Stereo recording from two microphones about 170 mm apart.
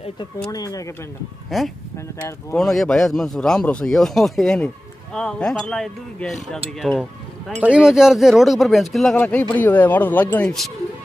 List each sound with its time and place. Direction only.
0.5 s speech: 20° left (ahead or behind)
1.5 s speech: centre (ahead or behind)